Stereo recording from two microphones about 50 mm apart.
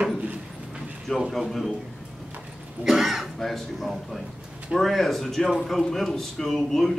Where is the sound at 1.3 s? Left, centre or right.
Centre.